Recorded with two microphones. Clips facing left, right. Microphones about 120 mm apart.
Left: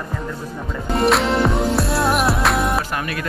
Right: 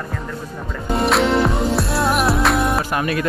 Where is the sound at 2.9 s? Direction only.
25° right (ahead or behind).